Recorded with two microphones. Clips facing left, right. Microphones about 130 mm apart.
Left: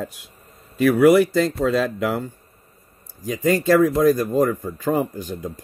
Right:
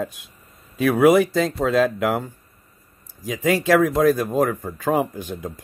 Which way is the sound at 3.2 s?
90° right.